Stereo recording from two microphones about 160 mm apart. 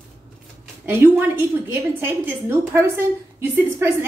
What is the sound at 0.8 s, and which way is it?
A woman's voice, 15° right (ahead or behind).